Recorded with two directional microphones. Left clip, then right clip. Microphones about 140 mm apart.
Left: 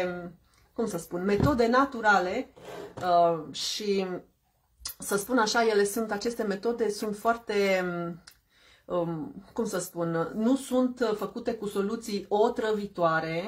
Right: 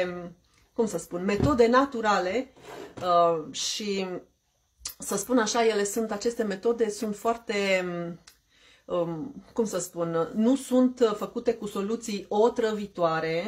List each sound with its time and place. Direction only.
0.7 s speech: 20° right (ahead or behind)